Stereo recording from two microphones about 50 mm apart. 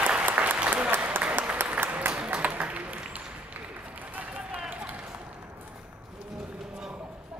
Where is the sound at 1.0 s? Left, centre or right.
Right.